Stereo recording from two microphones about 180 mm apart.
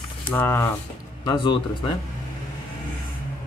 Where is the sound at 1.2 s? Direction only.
25° left (ahead or behind).